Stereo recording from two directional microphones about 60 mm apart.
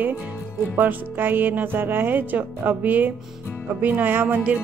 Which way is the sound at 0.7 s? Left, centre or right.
Right.